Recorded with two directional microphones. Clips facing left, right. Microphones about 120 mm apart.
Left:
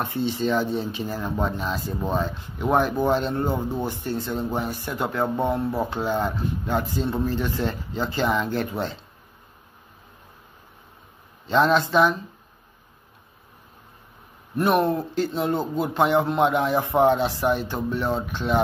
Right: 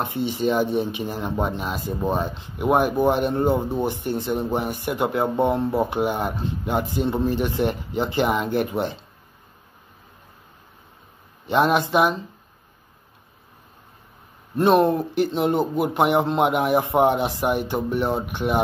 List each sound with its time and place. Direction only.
0.0 s speech: 15° right (ahead or behind)
11.4 s speech: 15° right (ahead or behind)
14.6 s speech: 25° right (ahead or behind)